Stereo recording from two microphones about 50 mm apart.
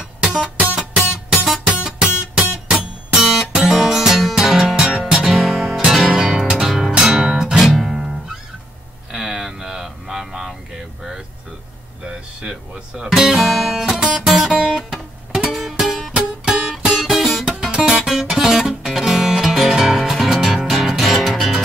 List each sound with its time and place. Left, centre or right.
0.0 s music: centre
5.2 s music: centre
9.1 s a sound: centre
12.1 s guitar: centre
16.4 s music: centre
16.7 s music: centre